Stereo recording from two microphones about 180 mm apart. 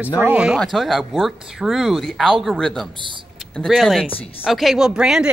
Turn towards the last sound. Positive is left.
turn(degrees=-5)  # may be behind; listen again after turning